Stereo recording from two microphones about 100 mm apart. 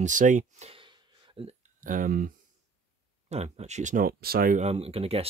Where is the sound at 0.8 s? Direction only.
60° right (ahead or behind).